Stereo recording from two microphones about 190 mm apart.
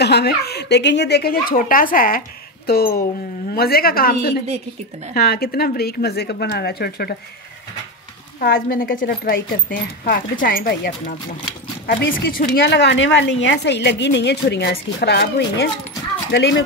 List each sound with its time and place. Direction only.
0.0 s a woman's voice: 60° left (ahead or behind)
8.5 s a woman's voice: 50° left (ahead or behind); by 16.6 s 65° left (ahead or behind)